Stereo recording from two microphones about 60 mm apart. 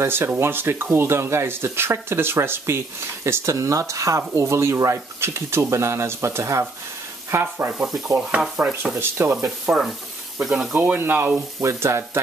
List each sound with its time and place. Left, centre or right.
0.0 s speech: right
4.4 s speech: right
8.3 s stir: centre
8.9 s speech: right
9.4 s frying: centre
10.7 s speech: right
11.6 s speech: right